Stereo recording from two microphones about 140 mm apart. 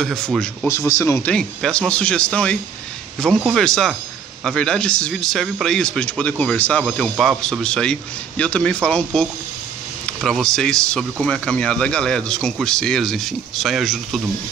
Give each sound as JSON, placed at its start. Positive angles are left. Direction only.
{"t": 0.0, "sound": "speech", "side_deg": 5}
{"t": 0.7, "sound": "speech", "side_deg": 20}
{"t": 1.3, "sound": "speech", "side_deg": 5}